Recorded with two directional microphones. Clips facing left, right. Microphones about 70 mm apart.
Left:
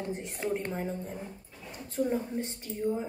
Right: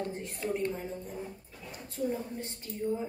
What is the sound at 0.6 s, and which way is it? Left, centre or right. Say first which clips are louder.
Speech: right 1 dB; left.